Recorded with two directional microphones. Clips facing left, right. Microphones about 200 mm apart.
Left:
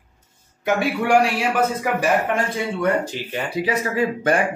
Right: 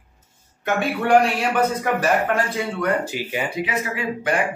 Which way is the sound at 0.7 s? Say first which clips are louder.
Left 1 dB; 10° left (ahead or behind).